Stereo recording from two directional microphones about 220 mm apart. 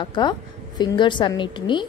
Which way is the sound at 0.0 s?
20° left (ahead or behind).